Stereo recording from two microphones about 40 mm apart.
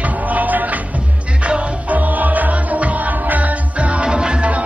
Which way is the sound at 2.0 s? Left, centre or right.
Right.